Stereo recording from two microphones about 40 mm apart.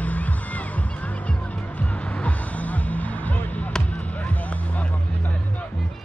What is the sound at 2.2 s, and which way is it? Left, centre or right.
Music, left.